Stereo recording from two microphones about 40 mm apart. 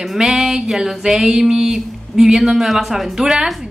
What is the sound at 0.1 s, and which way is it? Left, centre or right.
A woman's voice, centre.